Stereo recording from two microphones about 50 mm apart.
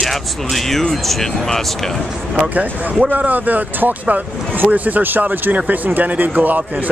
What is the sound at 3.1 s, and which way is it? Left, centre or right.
Speech, right.